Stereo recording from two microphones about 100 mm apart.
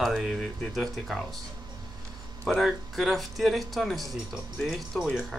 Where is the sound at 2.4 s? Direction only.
Centre (ahead or behind).